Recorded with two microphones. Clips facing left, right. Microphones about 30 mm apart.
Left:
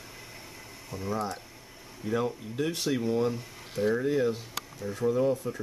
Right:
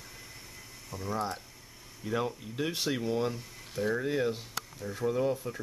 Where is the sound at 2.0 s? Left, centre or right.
Centre.